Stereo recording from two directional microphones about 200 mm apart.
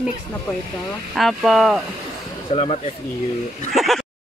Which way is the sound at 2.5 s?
30° left (ahead or behind).